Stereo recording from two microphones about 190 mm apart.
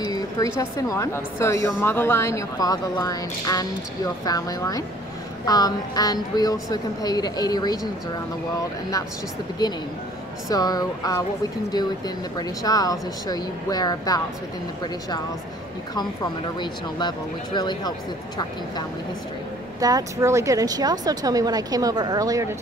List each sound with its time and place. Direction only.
0.1 s a woman's voice: 20° left (ahead or behind)
10.5 s a woman's voice: 20° left (ahead or behind)
12.4 s a woman's voice: 20° left (ahead or behind)
17.6 s a woman's voice: 20° left (ahead or behind)
19.8 s speech: 20° right (ahead or behind)